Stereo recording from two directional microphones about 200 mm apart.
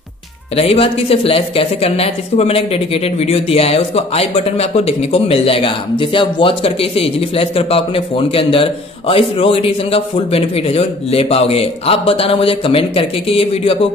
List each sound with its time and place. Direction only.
0.6 s speech: 30° left (ahead or behind)